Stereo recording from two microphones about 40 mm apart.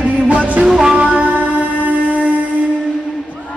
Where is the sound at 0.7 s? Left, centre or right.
Centre.